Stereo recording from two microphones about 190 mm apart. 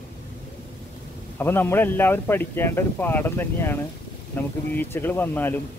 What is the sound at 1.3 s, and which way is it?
Speech, 10° left (ahead or behind).